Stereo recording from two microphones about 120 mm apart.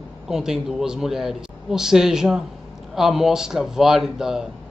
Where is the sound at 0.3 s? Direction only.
5° right (ahead or behind).